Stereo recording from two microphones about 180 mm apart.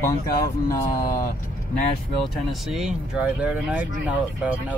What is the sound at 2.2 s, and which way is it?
Speech, centre (ahead or behind).